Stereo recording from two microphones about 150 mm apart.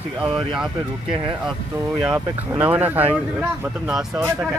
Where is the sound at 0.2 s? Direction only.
35° right (ahead or behind).